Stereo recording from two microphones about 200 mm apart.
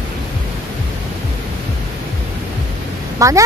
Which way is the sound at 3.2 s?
15° right (ahead or behind).